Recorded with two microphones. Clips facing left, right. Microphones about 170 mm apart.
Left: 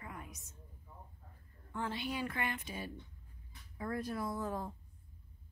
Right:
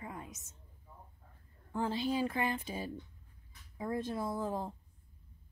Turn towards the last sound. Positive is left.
turn(degrees=-25)  # may be behind; listen again after turning